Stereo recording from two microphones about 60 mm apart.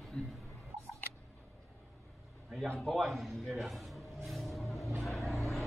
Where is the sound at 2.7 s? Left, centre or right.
Centre.